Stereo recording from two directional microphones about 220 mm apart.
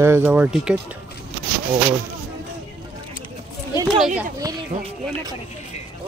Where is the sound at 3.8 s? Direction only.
Centre (ahead or behind).